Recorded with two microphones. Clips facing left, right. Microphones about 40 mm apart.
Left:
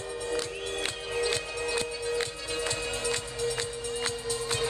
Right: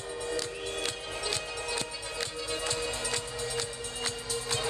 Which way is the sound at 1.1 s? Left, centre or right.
Left.